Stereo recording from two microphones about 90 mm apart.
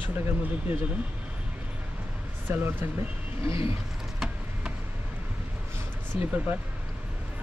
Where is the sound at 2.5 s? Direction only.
25° right (ahead or behind).